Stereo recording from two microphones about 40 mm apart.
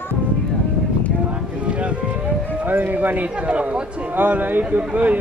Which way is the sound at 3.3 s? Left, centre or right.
Right.